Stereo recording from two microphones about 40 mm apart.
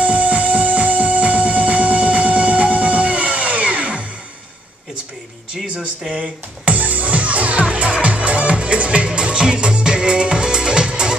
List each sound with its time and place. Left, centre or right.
0.0 s music: right
5.6 s a sound: centre
6.6 s music: right